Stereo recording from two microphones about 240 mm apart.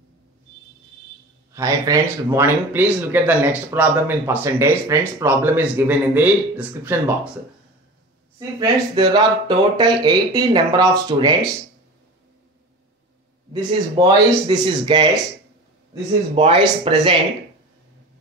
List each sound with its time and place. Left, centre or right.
1.5 s speech: centre
8.4 s speech: centre
13.5 s speech: centre